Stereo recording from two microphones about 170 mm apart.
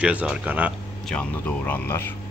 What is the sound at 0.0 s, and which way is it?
Speech, 5° right (ahead or behind).